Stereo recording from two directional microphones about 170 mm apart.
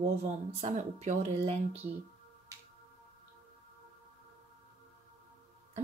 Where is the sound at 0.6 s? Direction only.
40° right (ahead or behind).